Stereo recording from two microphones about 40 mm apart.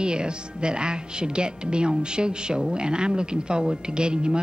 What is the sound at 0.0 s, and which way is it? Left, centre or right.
Speech, right.